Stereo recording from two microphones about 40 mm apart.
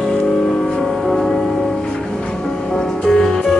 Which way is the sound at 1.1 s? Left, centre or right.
Centre.